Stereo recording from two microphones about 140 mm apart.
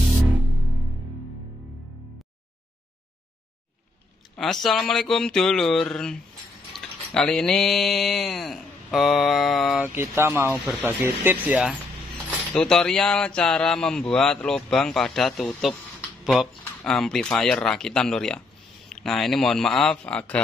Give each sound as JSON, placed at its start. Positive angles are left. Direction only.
{"t": 4.4, "sound": "speech", "side_deg": 0}
{"t": 6.7, "sound": "a sound", "side_deg": 5}
{"t": 9.9, "sound": "speech", "side_deg": -15}
{"t": 12.5, "sound": "speech", "side_deg": 5}